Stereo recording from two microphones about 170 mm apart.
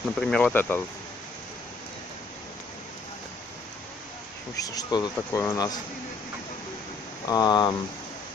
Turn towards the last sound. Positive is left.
turn(degrees=25)  # may be behind; listen again after turning